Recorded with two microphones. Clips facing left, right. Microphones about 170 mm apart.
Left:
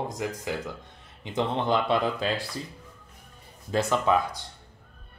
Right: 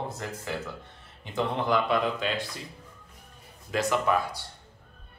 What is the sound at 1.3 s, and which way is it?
Speech, 25° left (ahead or behind).